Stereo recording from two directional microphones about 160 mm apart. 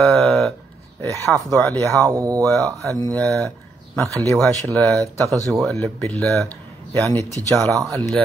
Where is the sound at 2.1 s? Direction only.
20° right (ahead or behind).